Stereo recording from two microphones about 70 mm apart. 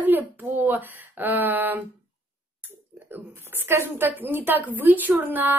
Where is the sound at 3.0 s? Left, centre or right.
Right.